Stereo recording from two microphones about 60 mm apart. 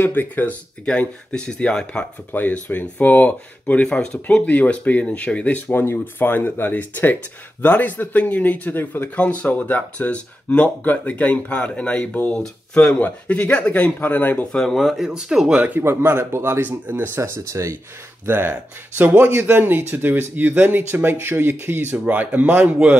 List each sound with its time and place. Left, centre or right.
0.0 s speech: left
0.8 s speech: centre
2.3 s speech: left
3.8 s speech: centre
13.0 s speech: left
14.5 s speech: centre
14.8 s speech: centre
15.8 s speech: right
16.6 s speech: right
17.1 s speech: right
17.5 s speech: right
18.2 s speech: right
18.9 s speech: right
22.0 s speech: right